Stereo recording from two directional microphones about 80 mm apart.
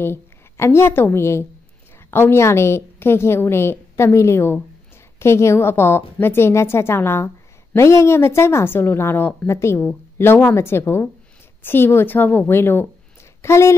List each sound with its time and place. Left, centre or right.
0.0 s a woman's voice: left